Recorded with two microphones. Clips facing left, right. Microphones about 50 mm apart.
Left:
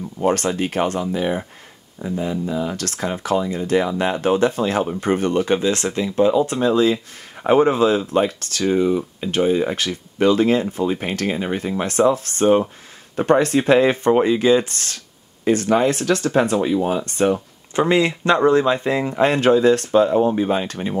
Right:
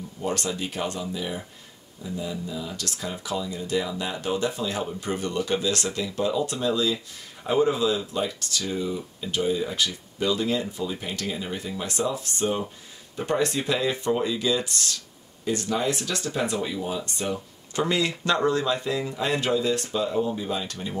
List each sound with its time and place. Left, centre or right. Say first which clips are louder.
0.2 s speech: left 9 dB; left
17.7 s speech: left 8 dB; left